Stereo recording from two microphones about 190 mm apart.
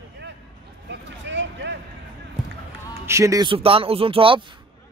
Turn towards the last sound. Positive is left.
turn(degrees=-30)  # may be behind; listen again after turning